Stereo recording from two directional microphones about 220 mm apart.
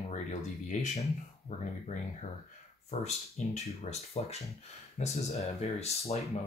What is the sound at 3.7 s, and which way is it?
Speech, 30° left (ahead or behind).